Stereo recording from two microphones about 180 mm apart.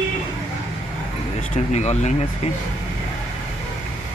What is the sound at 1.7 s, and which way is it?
Speech, 40° left (ahead or behind).